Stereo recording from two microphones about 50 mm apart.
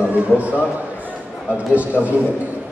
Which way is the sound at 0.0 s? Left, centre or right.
Right.